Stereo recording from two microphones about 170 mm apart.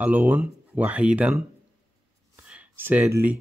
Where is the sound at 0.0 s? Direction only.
10° right (ahead or behind).